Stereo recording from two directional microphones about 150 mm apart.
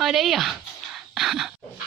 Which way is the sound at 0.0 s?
Centre (ahead or behind).